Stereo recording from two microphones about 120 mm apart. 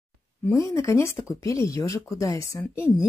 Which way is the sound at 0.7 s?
25° left (ahead or behind).